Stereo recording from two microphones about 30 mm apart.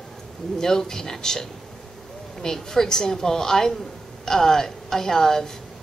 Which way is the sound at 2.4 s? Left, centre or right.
Centre.